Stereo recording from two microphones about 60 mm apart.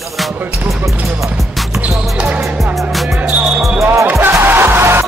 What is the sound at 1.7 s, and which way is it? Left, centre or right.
Basketball bounce, right.